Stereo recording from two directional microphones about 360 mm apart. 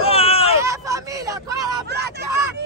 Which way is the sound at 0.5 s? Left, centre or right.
Centre.